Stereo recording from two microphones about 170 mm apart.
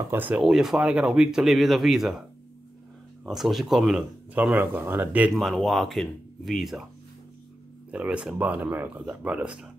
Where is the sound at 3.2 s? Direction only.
Centre (ahead or behind).